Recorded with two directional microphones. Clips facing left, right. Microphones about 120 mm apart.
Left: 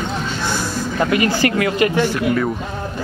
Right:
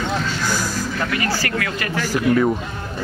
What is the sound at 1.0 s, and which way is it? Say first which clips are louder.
Speech: left 9 dB; 20° left (ahead or behind).